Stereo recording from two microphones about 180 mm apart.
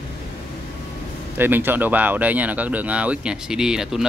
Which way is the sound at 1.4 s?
10° right (ahead or behind).